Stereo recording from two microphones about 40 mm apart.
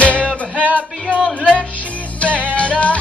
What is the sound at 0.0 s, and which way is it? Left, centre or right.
Music, left.